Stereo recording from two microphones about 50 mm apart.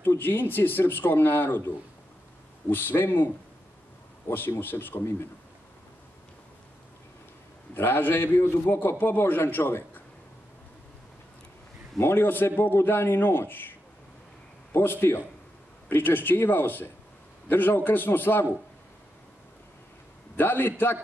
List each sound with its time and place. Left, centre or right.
0.2 s a man's voice: left
2.7 s a man's voice: left
4.3 s a man's voice: left
7.7 s a man's voice: left
12.0 s a man's voice: left
20.3 s a man's voice: left